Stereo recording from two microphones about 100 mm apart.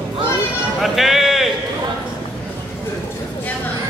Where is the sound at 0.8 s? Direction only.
Centre (ahead or behind).